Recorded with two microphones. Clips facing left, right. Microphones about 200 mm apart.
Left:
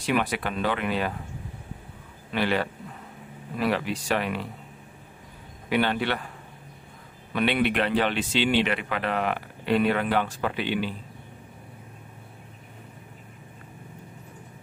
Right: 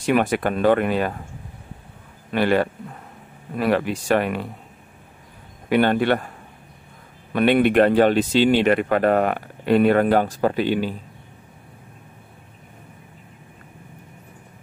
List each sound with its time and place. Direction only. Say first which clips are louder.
0.0 s speech: right 7 dB; 50° right (ahead or behind)
2.3 s speech: right 7 dB; 50° right (ahead or behind)
5.7 s speech: right 7 dB; 50° right (ahead or behind)
7.3 s speech: right 8 dB; 50° right (ahead or behind)